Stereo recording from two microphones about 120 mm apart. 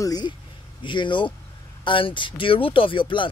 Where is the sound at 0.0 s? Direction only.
35° left (ahead or behind).